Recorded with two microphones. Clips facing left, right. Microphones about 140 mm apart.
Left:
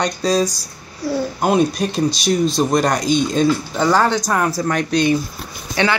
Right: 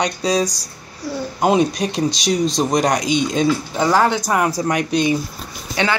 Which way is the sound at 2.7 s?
15° right (ahead or behind).